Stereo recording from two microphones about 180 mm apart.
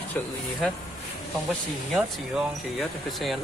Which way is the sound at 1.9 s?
Centre (ahead or behind).